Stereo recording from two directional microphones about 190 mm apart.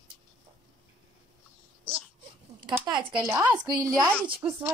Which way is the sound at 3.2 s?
5° right (ahead or behind).